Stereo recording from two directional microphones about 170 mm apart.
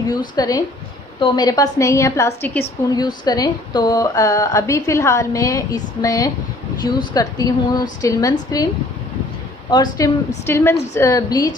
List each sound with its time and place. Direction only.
0.4 s a woman's voice: 20° left (ahead or behind)
9.7 s a woman's voice: 25° left (ahead or behind)